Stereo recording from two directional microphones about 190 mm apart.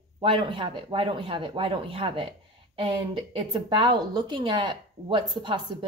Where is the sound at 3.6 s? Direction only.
25° right (ahead or behind).